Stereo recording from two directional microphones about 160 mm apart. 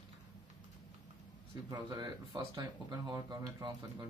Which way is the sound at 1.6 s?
25° right (ahead or behind).